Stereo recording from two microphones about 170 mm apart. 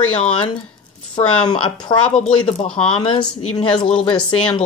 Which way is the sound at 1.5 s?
25° left (ahead or behind).